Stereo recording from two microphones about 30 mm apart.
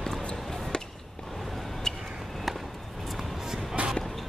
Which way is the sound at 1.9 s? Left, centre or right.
Centre.